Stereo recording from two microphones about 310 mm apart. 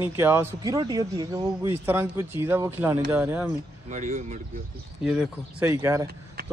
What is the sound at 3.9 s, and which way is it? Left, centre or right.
Speech, right.